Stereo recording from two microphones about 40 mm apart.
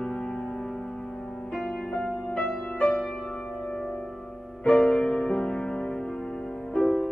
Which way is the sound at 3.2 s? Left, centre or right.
Centre.